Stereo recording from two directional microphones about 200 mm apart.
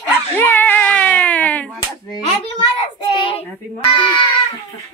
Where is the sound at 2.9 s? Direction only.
25° left (ahead or behind).